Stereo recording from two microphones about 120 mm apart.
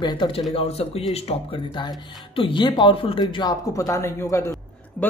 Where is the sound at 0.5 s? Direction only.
55° left (ahead or behind).